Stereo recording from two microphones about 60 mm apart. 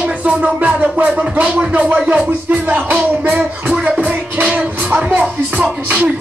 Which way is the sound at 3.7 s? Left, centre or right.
Centre.